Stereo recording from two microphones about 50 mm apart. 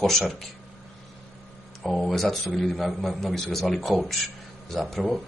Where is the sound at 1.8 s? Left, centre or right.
Centre.